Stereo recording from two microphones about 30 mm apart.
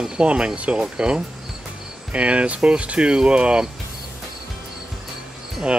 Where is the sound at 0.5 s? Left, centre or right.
Right.